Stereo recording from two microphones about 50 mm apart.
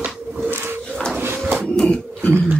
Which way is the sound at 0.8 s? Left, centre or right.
Centre.